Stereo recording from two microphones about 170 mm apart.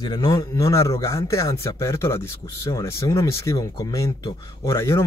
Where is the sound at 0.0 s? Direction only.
25° left (ahead or behind).